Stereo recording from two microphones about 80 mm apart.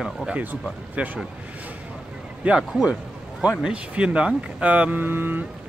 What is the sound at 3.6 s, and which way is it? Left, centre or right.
Speech, centre.